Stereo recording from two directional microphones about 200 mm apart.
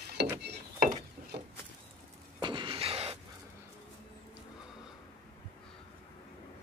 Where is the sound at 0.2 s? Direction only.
55° right (ahead or behind).